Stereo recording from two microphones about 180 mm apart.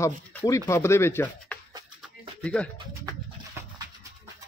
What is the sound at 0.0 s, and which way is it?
Speech, 15° left (ahead or behind).